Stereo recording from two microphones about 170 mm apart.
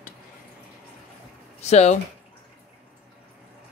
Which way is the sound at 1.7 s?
40° left (ahead or behind).